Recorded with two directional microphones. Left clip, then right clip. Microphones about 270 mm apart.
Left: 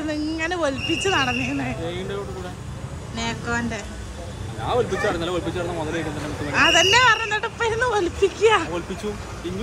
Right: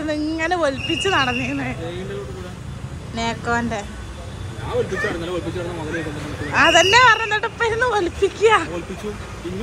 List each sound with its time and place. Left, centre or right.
0.0 s speech: centre
3.2 s speech: centre
4.9 s speech: left
6.5 s speech: centre